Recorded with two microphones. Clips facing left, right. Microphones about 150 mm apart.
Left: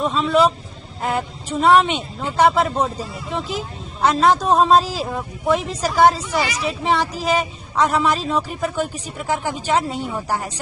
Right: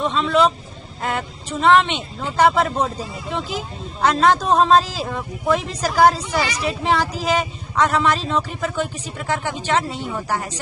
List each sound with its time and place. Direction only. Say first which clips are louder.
0.0 s a woman's voice: left 1 dB; 5° left (ahead or behind)